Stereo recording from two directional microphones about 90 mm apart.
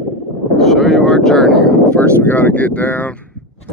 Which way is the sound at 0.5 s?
Centre (ahead or behind).